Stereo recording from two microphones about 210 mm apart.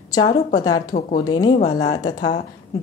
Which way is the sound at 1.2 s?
20° left (ahead or behind).